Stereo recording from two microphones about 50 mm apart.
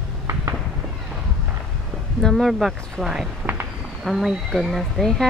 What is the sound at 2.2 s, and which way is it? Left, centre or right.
Speech, centre.